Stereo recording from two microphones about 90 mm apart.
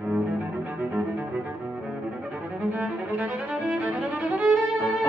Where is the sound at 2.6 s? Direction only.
15° right (ahead or behind).